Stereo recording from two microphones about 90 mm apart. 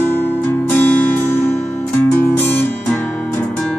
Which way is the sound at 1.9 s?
20° left (ahead or behind).